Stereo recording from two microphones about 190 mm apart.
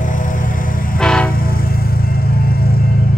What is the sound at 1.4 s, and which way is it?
Music, 50° left (ahead or behind).